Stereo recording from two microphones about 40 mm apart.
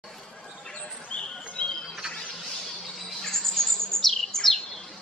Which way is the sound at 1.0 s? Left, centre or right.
Left.